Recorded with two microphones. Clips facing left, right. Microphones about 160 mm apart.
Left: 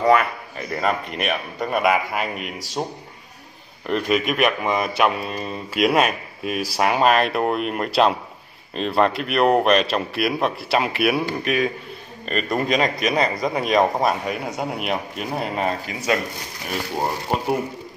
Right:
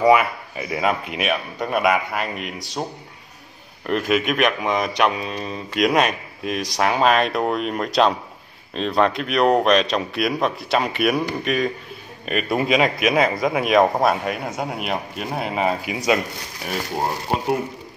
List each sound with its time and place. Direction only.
0.0 s speech: 10° right (ahead or behind)
3.8 s speech: centre (ahead or behind)
15.9 s speech: 15° right (ahead or behind)